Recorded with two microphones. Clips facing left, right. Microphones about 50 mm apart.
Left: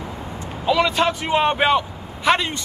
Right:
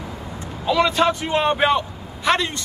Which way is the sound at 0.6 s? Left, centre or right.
Centre.